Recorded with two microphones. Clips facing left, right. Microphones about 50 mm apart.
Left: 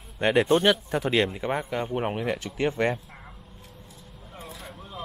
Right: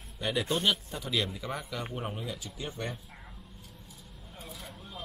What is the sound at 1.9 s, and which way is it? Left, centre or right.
Speech, left.